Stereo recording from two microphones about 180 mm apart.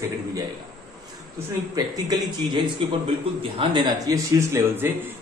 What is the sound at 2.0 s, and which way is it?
A man's voice, 20° right (ahead or behind).